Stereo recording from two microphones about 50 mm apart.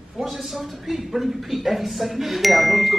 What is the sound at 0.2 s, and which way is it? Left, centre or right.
Speech, centre.